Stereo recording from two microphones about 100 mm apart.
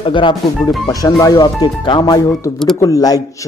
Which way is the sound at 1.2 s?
40° left (ahead or behind).